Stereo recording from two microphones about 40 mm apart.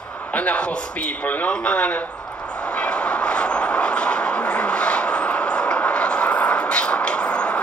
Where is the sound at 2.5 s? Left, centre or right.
Left.